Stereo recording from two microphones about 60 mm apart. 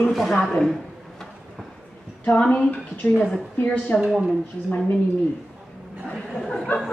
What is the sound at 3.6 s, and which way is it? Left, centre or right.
Speech, left.